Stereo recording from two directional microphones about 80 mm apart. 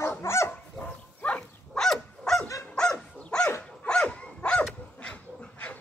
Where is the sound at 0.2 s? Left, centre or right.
Left.